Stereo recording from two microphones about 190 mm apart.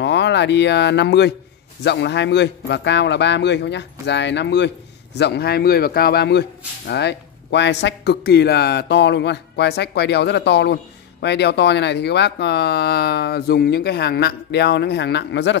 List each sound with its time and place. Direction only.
0.0 s speech: 65° left (ahead or behind)